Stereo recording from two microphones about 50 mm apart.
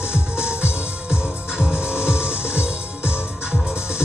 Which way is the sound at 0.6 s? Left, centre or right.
Right.